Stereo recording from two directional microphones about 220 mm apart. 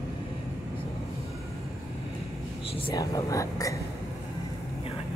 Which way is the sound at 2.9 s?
15° left (ahead or behind).